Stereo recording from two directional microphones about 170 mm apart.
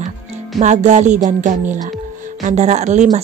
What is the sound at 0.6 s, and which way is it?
A woman's voice, 45° right (ahead or behind).